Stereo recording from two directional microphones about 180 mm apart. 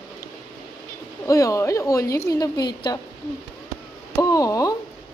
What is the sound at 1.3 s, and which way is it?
A woman's voice, 20° left (ahead or behind).